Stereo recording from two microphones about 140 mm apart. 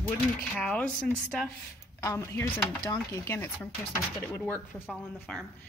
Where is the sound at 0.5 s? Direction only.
10° left (ahead or behind).